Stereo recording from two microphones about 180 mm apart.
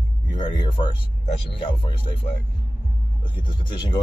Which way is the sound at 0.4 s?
25° left (ahead or behind).